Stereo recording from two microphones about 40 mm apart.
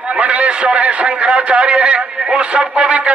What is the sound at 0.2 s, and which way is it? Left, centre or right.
A man's voice, right.